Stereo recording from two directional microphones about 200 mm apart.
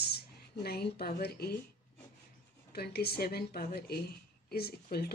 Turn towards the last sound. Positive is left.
turn(degrees=50)  # may be behind; listen again after turning